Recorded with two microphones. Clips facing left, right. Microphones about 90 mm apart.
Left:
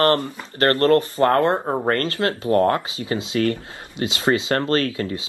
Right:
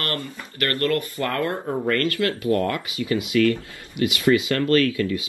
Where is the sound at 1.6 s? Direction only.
60° left (ahead or behind).